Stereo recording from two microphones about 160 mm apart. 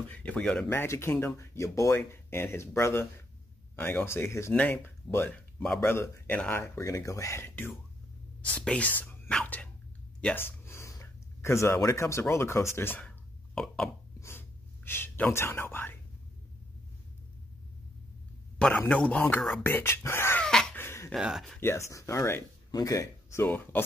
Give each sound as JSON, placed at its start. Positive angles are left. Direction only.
{"t": 0.1, "sound": "speech", "side_deg": 10}
{"t": 14.9, "sound": "speech", "side_deg": 15}
{"t": 18.6, "sound": "speech", "side_deg": 10}
{"t": 20.4, "sound": "a sound", "side_deg": 10}
{"t": 21.1, "sound": "speech", "side_deg": 0}
{"t": 21.5, "sound": "speech", "side_deg": 15}